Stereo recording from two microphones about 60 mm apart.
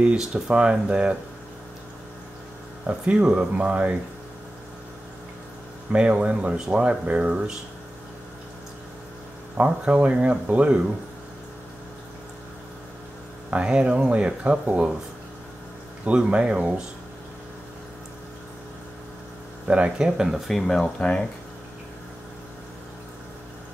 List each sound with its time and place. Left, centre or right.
0.0 s speech: centre
2.9 s speech: centre
5.9 s speech: centre
9.6 s speech: right
13.5 s speech: centre
16.1 s speech: centre
19.7 s speech: centre
20.1 s speech: centre
20.8 s speech: centre